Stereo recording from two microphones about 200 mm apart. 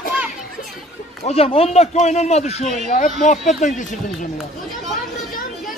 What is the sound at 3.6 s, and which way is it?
Speech, 40° left (ahead or behind).